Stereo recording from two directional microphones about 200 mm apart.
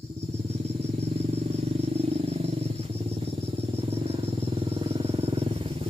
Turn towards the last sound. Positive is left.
turn(degrees=-30)  # may be behind; listen again after turning